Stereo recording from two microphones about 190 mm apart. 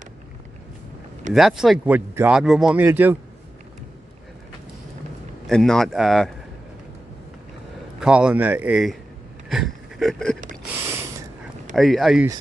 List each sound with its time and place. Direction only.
1.3 s speech: centre (ahead or behind)
5.5 s speech: centre (ahead or behind)
8.0 s speech: 5° right (ahead or behind)
9.5 s a sound: centre (ahead or behind)
10.7 s a sound: 15° right (ahead or behind)
11.7 s speech: centre (ahead or behind)